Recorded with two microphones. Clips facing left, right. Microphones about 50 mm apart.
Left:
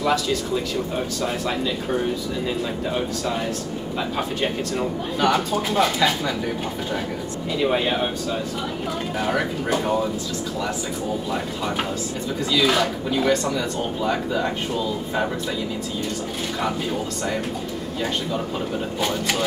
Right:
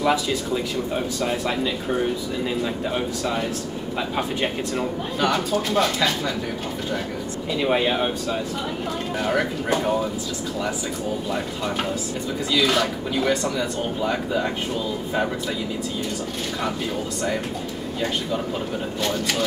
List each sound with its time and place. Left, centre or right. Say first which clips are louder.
0.0 s speech: even; centre
5.2 s speech: left 1 dB; centre
7.6 s speech: even; centre
9.2 s speech: right 1 dB; centre
12.5 s speech: left 1 dB; centre